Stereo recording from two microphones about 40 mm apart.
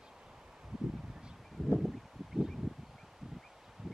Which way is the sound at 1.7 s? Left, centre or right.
Centre.